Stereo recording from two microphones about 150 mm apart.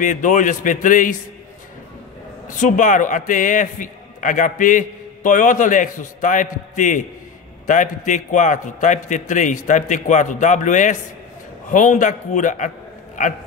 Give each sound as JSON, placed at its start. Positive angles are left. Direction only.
{"t": 0.0, "sound": "a man's voice", "side_deg": 55}
{"t": 2.4, "sound": "a man's voice", "side_deg": 60}